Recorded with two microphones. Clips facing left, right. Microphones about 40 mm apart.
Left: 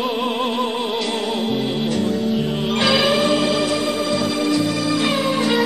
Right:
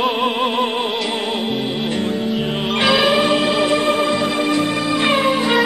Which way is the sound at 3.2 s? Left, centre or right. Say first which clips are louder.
Right 2 dB; right.